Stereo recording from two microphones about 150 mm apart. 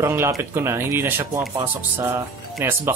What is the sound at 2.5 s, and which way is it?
Speech, 15° right (ahead or behind).